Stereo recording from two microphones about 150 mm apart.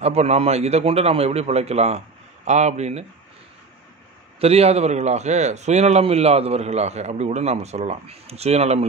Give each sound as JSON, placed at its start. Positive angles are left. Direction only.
{"t": 0.0, "sound": "a man's voice", "side_deg": -45}
{"t": 4.4, "sound": "a man's voice", "side_deg": -45}